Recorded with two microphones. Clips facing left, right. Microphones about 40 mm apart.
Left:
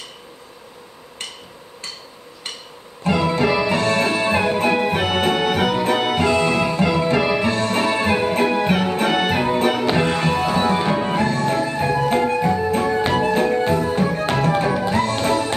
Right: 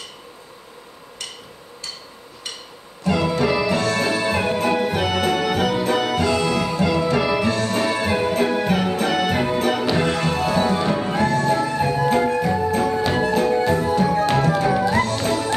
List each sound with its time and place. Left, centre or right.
3.0 s music: left
3.4 s music: left